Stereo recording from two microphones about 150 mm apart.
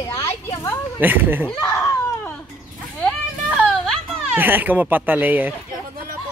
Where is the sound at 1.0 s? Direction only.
10° right (ahead or behind).